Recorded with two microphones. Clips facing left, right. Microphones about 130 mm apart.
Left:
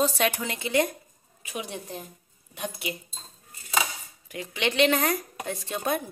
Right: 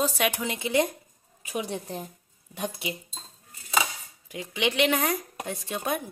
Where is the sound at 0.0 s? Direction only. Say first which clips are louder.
Left 1 dB; 10° right (ahead or behind).